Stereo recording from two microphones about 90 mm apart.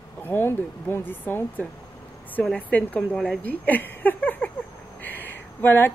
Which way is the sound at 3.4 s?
20° left (ahead or behind).